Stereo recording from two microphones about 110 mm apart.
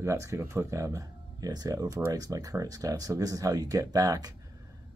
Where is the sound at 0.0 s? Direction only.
25° right (ahead or behind).